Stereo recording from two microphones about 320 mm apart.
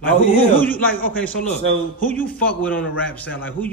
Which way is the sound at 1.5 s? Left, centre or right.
Left.